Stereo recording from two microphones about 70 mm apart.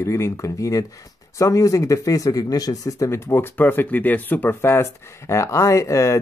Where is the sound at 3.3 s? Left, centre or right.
Left.